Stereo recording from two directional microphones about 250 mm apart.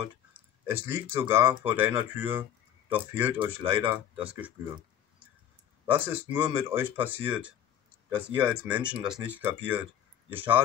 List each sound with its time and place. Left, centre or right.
0.3 s a sound: centre
1.3 s speech: centre
3.6 s speech: right
3.9 s speech: centre
5.9 s speech: centre